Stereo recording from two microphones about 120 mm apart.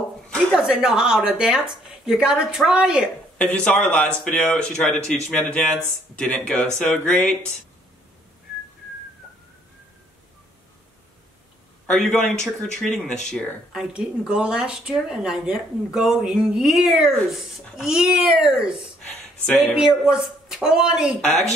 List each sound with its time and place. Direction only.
0.3 s speech: centre (ahead or behind)
3.3 s a man's voice: 10° left (ahead or behind)
11.9 s speech: 5° left (ahead or behind)
13.7 s speech: 5° right (ahead or behind)
19.0 s a sound: 10° left (ahead or behind)
19.7 s speech: 5° right (ahead or behind)
21.3 s speech: 65° left (ahead or behind)